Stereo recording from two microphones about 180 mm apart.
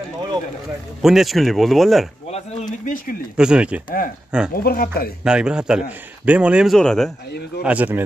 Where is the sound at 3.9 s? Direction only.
50° left (ahead or behind).